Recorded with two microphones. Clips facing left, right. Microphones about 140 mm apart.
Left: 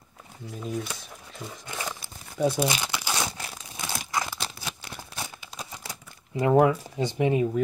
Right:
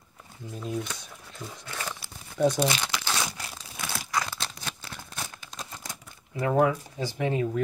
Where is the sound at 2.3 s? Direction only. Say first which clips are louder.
Right 1 dB; 10° left (ahead or behind).